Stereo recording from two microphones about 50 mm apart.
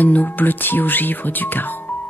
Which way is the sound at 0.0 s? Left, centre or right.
Left.